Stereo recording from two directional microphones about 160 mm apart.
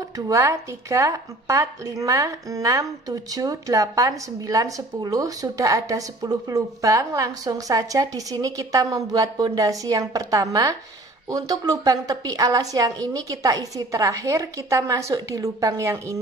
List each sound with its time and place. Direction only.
0.3 s a woman's voice: 20° right (ahead or behind)